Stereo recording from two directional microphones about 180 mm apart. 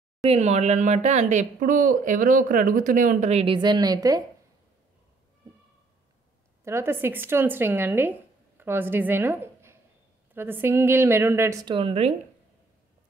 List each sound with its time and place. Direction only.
0.2 s speech: 35° right (ahead or behind); by 4.2 s 20° right (ahead or behind)
6.6 s a woman's voice: 15° right (ahead or behind); by 12.1 s 30° right (ahead or behind)